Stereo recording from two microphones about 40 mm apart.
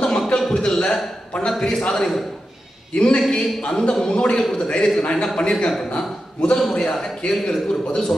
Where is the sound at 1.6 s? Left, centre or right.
Centre.